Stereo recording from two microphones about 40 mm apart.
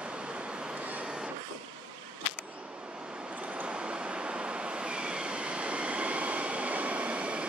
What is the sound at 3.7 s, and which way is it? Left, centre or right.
Train, right.